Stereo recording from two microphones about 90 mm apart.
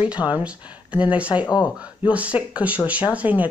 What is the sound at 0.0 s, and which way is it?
Speech, 15° right (ahead or behind).